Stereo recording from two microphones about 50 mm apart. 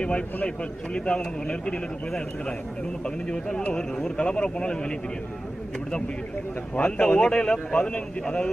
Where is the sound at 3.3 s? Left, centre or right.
Centre.